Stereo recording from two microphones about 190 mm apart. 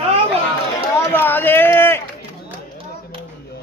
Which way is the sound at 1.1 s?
10° left (ahead or behind).